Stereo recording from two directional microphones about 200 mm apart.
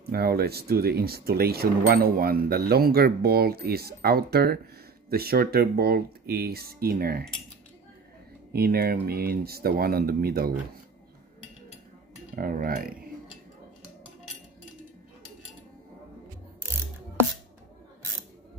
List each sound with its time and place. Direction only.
0.1 s speech: 50° right (ahead or behind)
8.5 s speech: 50° right (ahead or behind)
12.4 s speech: 45° right (ahead or behind)